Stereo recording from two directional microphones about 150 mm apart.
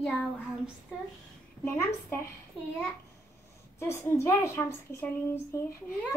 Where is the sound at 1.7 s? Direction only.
15° left (ahead or behind).